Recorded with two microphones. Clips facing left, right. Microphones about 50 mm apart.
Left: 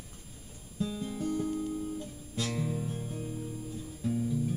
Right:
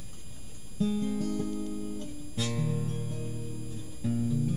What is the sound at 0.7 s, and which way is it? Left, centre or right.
Music, centre.